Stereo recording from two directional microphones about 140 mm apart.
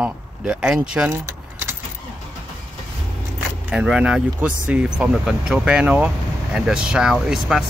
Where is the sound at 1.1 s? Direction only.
20° right (ahead or behind).